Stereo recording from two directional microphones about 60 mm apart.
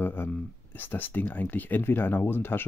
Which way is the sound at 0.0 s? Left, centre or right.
Left.